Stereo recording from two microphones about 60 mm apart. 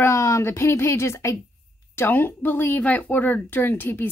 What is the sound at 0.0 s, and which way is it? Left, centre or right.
Speech, left.